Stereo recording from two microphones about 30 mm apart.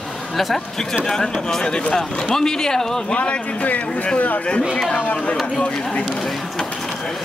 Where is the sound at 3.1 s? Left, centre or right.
Left.